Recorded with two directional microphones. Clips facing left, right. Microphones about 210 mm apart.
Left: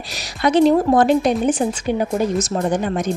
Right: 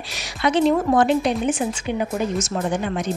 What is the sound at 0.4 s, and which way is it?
Speech, 40° left (ahead or behind).